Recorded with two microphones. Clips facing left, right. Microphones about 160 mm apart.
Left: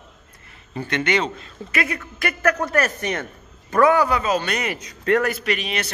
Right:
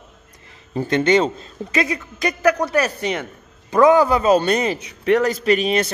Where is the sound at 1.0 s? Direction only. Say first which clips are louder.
Right 6 dB; 25° right (ahead or behind).